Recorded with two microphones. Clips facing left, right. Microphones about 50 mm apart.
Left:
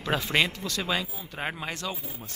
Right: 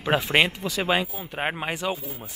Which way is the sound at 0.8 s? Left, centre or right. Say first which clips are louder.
Right 7 dB; right.